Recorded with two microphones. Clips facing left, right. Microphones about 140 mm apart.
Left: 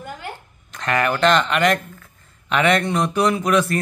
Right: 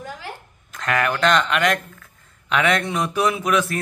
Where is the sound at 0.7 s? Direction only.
Centre (ahead or behind).